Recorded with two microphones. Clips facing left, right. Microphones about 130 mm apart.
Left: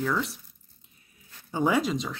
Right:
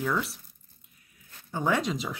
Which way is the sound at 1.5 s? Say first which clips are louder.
Left 3 dB; 10° left (ahead or behind).